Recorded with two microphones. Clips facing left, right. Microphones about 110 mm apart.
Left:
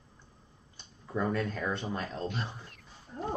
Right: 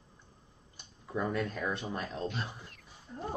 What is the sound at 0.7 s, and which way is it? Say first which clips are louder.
Speech: left 2 dB; 5° right (ahead or behind).